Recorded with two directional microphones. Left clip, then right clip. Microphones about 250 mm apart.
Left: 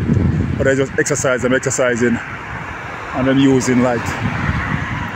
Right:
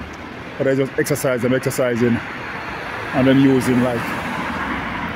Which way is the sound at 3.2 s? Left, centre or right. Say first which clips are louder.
Right 1 dB; centre.